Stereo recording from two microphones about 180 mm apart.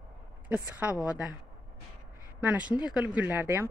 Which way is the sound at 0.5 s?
10° right (ahead or behind).